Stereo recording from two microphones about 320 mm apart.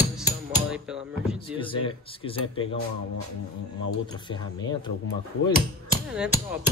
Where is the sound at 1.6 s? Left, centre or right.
Centre.